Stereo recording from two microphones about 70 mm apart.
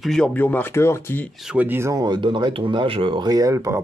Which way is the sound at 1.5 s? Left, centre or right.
Right.